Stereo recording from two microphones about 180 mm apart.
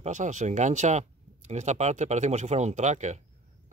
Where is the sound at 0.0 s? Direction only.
40° right (ahead or behind).